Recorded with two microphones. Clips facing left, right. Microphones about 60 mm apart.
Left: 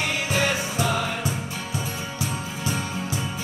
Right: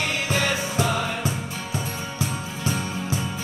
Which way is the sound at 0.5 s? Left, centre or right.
Centre.